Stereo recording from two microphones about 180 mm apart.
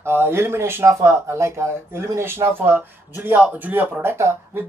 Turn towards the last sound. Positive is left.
turn(degrees=-15)  # may be behind; listen again after turning